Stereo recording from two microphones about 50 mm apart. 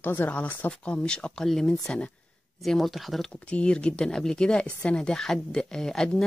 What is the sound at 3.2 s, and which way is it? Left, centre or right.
Speech, centre.